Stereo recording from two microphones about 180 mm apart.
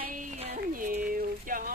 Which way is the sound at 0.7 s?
50° right (ahead or behind).